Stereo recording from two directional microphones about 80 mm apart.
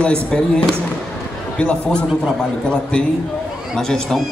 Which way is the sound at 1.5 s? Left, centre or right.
Centre.